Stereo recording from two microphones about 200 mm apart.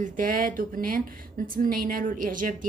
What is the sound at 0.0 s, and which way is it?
Speech, 40° right (ahead or behind).